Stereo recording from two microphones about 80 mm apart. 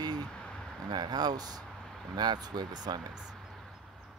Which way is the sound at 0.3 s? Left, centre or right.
Centre.